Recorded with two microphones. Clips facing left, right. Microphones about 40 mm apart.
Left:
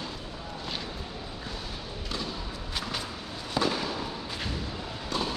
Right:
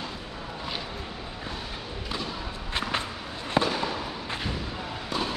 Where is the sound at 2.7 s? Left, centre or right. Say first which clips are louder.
Right 6 dB; right.